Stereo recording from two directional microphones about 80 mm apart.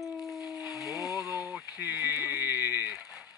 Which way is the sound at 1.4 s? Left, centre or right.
Centre.